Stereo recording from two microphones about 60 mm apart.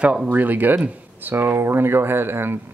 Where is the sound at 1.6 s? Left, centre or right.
Right.